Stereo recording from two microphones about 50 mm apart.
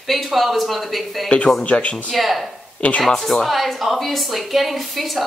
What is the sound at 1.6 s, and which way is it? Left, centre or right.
Speech, left.